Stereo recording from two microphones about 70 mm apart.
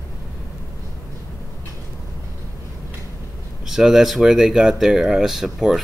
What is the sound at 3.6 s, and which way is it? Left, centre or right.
Speech, centre.